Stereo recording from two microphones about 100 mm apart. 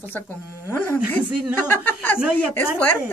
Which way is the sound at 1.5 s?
20° left (ahead or behind).